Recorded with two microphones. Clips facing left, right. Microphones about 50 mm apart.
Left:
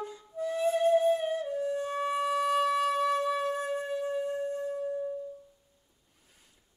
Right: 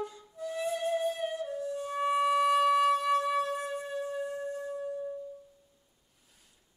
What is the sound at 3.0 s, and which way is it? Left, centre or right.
Music, centre.